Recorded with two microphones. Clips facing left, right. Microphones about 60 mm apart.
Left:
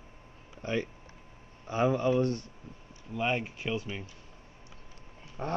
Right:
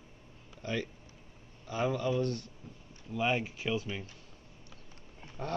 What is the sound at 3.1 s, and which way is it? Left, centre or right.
Speech, centre.